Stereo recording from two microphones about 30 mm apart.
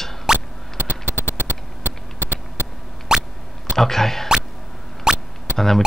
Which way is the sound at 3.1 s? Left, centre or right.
Right.